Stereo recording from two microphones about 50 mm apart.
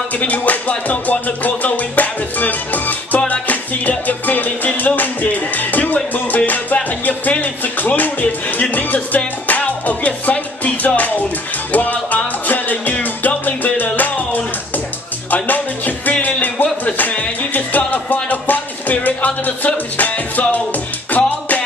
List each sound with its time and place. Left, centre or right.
0.1 s music: left